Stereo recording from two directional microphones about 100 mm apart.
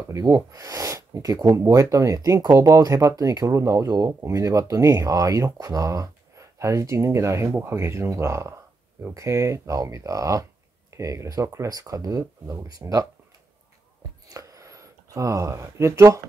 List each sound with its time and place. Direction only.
0.1 s speech: 35° right (ahead or behind)
14.3 s speech: 35° right (ahead or behind)